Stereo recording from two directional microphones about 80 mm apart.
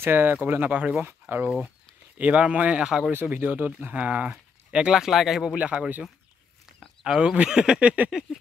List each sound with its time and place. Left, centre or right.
0.0 s speech: right
3.1 s speech: right; by 5.6 s centre
5.6 s speech: centre
6.8 s a sound: centre
7.2 s speech: centre